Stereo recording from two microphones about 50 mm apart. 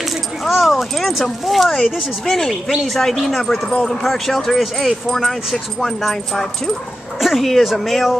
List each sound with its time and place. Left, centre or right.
0.0 s speech: centre
3.7 s speech: centre
4.0 s speech: centre